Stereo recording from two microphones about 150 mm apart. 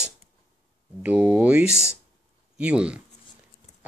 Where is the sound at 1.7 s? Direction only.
20° left (ahead or behind).